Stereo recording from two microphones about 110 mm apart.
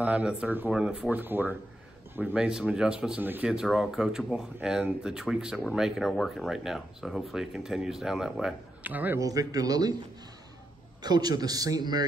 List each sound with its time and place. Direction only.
0.0 s speech: 10° right (ahead or behind)
1.2 s speech: 15° right (ahead or behind)
3.2 s speech: 15° right (ahead or behind)
3.4 s speech: 5° right (ahead or behind)
8.8 s speech: 15° right (ahead or behind)
9.2 s a man's voice: 30° right (ahead or behind)
11.0 s a man's voice: 40° right (ahead or behind)